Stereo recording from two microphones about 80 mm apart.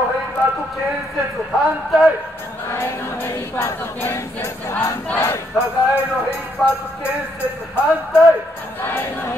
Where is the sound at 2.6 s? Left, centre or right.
Left.